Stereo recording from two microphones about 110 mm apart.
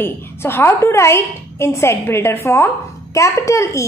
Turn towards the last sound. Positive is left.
turn(degrees=25)  # may be behind; listen again after turning